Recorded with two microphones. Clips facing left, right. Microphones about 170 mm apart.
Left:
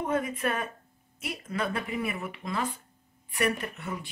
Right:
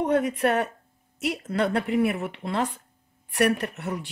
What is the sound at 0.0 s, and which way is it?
Speech, 75° right (ahead or behind).